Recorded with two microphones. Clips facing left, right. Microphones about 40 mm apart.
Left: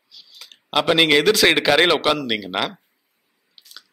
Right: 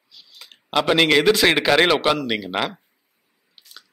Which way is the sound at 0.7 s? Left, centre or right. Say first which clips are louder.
Left 1 dB; centre.